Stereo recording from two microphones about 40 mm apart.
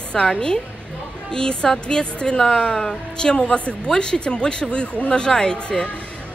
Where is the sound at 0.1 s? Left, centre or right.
Centre.